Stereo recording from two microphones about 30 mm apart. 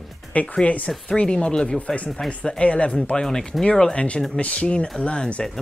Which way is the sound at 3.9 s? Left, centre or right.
Left.